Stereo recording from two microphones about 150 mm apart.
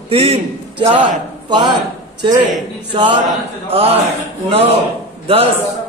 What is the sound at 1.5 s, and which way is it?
Speech, 30° right (ahead or behind).